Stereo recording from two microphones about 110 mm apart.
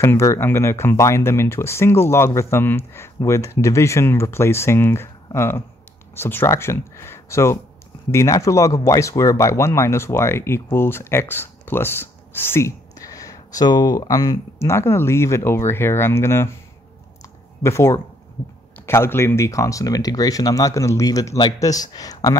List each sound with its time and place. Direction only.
0.0 s speech: 25° left (ahead or behind)
14.6 s speech: 25° left (ahead or behind)
17.6 s speech: 25° left (ahead or behind)